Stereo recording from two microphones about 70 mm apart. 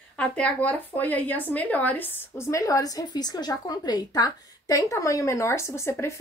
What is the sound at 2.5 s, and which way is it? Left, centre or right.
A woman's voice, left.